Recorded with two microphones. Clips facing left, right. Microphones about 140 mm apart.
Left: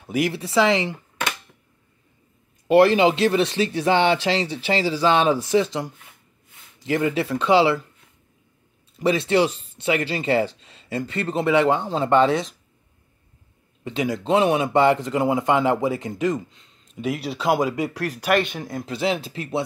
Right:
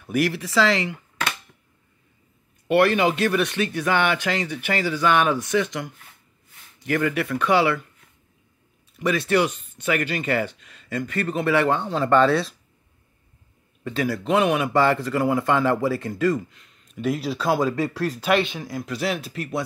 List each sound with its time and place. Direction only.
0.0 s speech: 25° left (ahead or behind)
2.7 s speech: 25° left (ahead or behind)
8.9 s speech: 25° left (ahead or behind)
13.8 s speech: 20° left (ahead or behind)
18.3 s speech: 50° left (ahead or behind)
18.8 s speech: 25° left (ahead or behind)